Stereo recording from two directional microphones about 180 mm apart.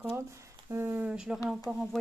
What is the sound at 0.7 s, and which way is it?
A woman's voice, 10° right (ahead or behind).